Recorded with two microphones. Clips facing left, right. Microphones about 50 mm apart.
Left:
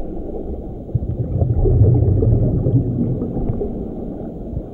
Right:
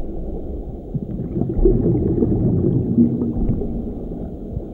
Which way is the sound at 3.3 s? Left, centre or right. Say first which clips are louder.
Left 1 dB; centre.